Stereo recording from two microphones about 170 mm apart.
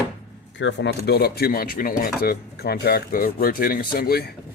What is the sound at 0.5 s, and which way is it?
Speech, 90° left.